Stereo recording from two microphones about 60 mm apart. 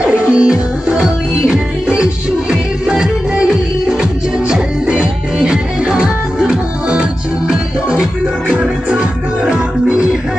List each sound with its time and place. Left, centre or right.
0.0 s music: centre